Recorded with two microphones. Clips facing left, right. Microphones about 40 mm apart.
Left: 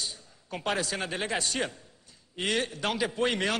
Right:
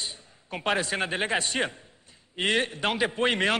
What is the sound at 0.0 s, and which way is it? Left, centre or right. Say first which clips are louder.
A man's voice: right 1 dB; right.